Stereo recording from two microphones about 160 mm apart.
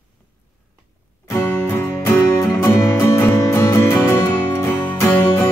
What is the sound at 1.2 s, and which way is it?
Music, 15° left (ahead or behind).